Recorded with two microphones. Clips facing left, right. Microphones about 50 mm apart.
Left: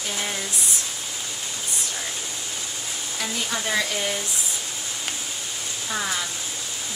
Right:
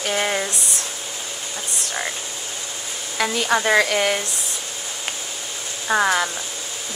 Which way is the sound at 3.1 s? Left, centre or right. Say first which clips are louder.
Right 9 dB; right.